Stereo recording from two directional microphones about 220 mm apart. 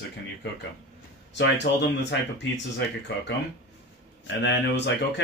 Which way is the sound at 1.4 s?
50° left (ahead or behind).